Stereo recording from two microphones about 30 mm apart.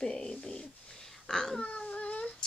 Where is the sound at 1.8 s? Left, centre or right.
Left.